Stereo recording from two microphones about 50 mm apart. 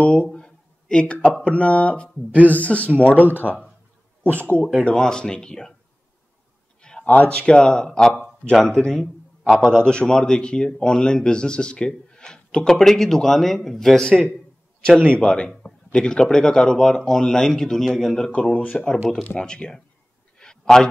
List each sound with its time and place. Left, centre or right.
0.3 s a sound: centre
1.4 s speech: left
3.3 s a man's voice: right
4.9 s a man's voice: centre
6.8 s a sound: centre
7.1 s a man's voice: left; by 18.3 s centre
18.3 s speech: left
18.7 s a man's voice: centre
20.4 s a sound: centre